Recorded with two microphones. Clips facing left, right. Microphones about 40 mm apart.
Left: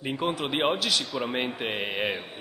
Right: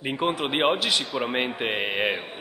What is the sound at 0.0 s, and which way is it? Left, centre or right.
A man's voice, right.